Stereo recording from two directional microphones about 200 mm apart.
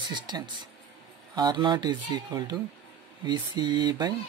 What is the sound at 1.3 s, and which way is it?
Speech, 20° right (ahead or behind).